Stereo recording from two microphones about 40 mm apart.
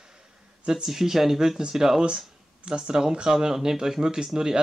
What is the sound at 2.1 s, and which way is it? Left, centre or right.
Speech, right.